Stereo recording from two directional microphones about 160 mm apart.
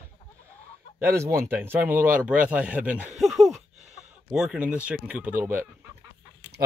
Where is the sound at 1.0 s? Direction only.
15° right (ahead or behind).